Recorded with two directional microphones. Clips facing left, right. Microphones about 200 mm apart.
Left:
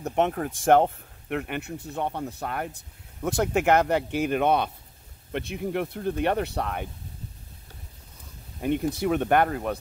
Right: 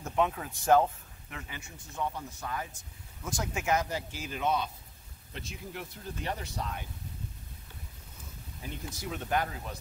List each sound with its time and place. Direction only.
0.1 s speech: 55° left (ahead or behind)
8.5 s speech: 60° left (ahead or behind)